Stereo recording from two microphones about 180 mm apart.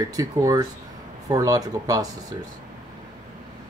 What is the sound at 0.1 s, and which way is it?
Speech, 20° right (ahead or behind).